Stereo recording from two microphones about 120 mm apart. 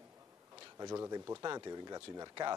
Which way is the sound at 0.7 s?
30° right (ahead or behind).